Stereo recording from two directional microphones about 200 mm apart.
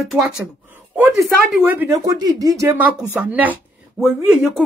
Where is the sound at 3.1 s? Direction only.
5° right (ahead or behind).